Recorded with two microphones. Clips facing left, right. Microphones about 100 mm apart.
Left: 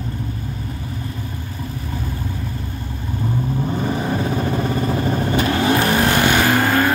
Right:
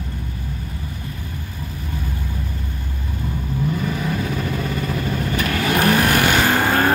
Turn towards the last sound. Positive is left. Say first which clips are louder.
# left 1 dB
turn(degrees=-15)  # may be behind; listen again after turning